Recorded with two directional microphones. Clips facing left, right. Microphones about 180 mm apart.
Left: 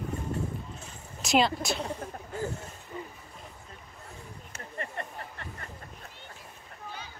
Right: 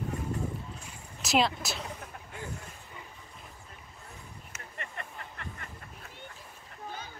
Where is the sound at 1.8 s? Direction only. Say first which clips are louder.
Left 6 dB; 45° left (ahead or behind).